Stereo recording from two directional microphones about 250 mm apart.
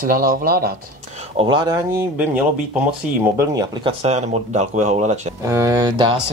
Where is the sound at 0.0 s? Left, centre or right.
Right.